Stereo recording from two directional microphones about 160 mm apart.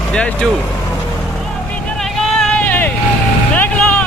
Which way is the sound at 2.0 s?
5° left (ahead or behind).